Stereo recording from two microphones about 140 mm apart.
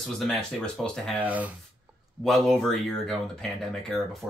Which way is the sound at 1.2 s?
10° right (ahead or behind).